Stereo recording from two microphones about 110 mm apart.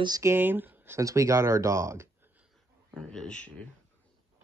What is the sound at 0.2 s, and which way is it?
Speech, 20° right (ahead or behind).